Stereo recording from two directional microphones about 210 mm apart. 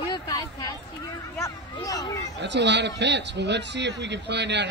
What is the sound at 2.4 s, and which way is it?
Speech, 55° right (ahead or behind).